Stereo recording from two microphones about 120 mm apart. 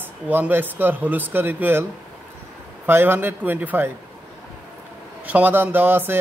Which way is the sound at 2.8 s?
20° right (ahead or behind).